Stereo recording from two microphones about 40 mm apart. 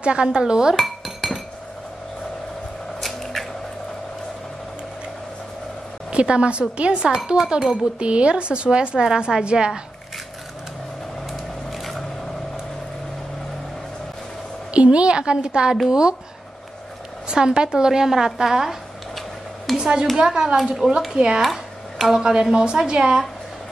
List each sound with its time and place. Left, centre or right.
0.0 s a woman's voice: right
0.7 s dishes: centre
3.0 s squish: centre
6.0 s a woman's voice: right
9.0 s a woman's voice: centre
11.7 s a sound: centre
14.7 s a woman's voice: right
17.3 s a woman's voice: right
19.1 s a sound: centre
19.8 s a woman's voice: centre
20.5 s speech: centre
21.1 s a woman's voice: centre
21.4 s music: centre
22.2 s a woman's voice: centre